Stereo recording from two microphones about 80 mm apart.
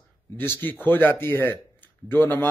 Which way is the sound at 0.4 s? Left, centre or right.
Left.